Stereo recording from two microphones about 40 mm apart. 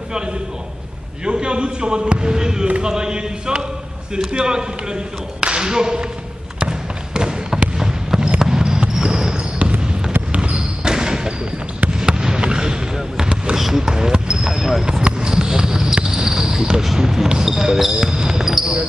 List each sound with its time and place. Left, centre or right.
0.1 s a sound: right
1.2 s speech: right
6.6 s trickle: centre
7.7 s fireworks: centre
8.4 s a sound: centre
8.8 s basketball bounce: right
9.4 s basketball bounce: right
10.3 s a sound: right
10.8 s basketball bounce: centre
12.0 s a sound: centre
12.9 s basketball bounce: centre
13.6 s basketball bounce: centre
14.9 s basketball bounce: centre